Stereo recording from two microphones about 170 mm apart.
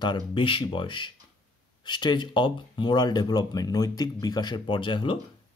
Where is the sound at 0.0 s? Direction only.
30° left (ahead or behind).